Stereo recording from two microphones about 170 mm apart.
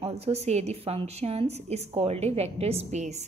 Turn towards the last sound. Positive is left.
turn(degrees=-40)  # may be behind; listen again after turning